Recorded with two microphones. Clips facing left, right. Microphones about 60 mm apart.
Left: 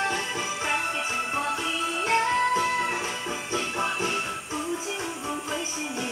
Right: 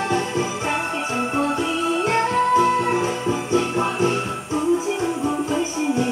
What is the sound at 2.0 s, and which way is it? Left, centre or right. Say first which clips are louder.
Music: right 2 dB; right.